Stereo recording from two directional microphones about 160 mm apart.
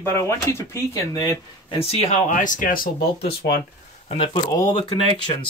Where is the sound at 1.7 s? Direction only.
45° left (ahead or behind).